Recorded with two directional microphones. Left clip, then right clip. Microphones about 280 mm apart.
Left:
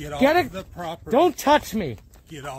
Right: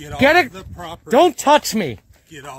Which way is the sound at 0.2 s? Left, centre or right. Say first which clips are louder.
Right 6 dB; right.